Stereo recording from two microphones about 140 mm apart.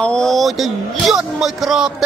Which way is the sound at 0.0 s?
5° left (ahead or behind).